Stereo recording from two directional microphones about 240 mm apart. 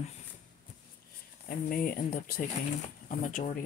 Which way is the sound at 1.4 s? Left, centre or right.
Left.